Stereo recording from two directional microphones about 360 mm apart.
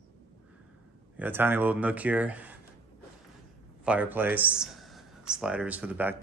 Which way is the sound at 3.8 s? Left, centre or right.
Centre.